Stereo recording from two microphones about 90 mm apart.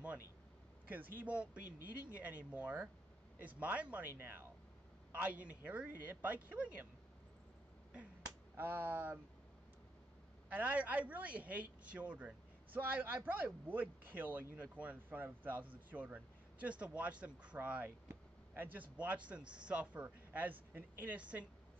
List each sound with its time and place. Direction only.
0.8 s a man's voice: 20° right (ahead or behind)
8.5 s speech: 25° right (ahead or behind)
10.5 s a man's voice: 20° right (ahead or behind)